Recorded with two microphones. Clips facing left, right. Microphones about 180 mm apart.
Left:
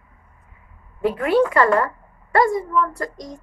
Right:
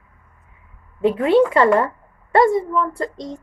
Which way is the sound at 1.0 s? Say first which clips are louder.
Right 3 dB; 25° right (ahead or behind).